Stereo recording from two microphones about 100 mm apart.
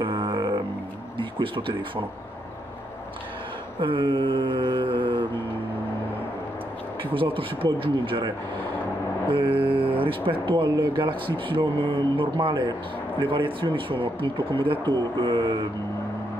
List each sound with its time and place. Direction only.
0.0 s didgeridoo: 55° right (ahead or behind)
1.1 s speech: 55° right (ahead or behind)
3.8 s speech: 55° right (ahead or behind)
7.2 s speech: 60° right (ahead or behind)
9.3 s speech: 60° right (ahead or behind)